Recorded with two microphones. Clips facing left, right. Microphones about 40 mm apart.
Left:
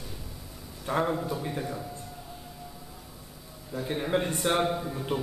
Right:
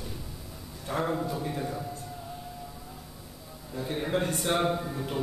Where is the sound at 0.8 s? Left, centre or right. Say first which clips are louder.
Left 3 dB; centre.